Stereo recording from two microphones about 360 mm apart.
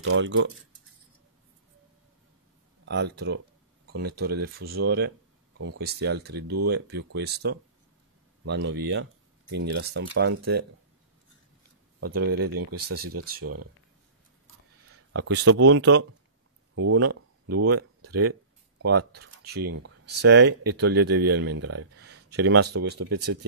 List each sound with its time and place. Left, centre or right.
0.0 s speech: right
2.8 s speech: right
12.0 s speech: right
12.9 s speech: right
13.4 s speech: right
15.1 s speech: right
16.7 s a sound: right
19.4 s speech: right
21.5 s speech: right